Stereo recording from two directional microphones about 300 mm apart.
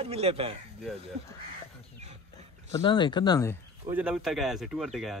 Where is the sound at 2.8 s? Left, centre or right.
Centre.